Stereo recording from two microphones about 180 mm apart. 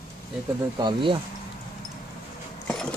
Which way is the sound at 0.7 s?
25° right (ahead or behind).